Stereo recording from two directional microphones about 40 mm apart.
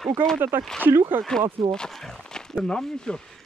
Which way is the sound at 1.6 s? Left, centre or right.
Centre.